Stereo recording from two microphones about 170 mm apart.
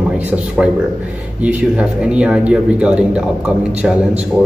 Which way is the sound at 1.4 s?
5° right (ahead or behind).